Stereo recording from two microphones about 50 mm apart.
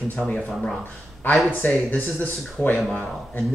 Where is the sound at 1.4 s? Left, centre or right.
Left.